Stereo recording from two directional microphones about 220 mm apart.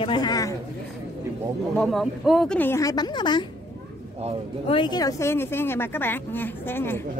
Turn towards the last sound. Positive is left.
turn(degrees=10)  # may be behind; listen again after turning